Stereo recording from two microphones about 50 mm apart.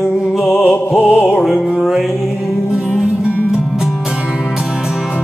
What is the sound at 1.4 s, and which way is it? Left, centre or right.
Music, centre.